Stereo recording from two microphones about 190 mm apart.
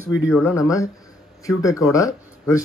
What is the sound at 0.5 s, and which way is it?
Speech, 15° left (ahead or behind).